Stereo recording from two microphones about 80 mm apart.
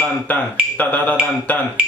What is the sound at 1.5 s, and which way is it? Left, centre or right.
Speech, centre.